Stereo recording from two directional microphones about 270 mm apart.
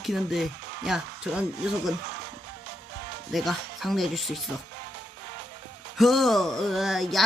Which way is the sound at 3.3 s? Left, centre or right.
Centre.